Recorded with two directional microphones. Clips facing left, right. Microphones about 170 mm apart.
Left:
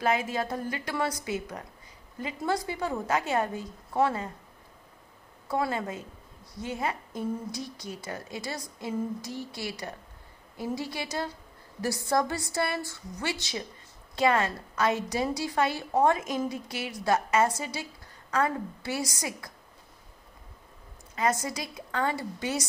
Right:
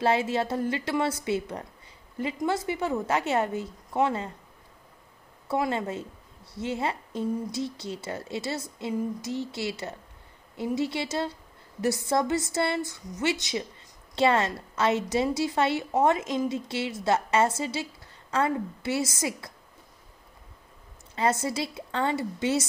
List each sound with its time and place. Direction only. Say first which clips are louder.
0.0 s a woman's voice: right 3 dB; 30° right (ahead or behind)
5.5 s a woman's voice: right 2 dB; 25° right (ahead or behind)
21.1 s a woman's voice: right 2 dB; 25° right (ahead or behind)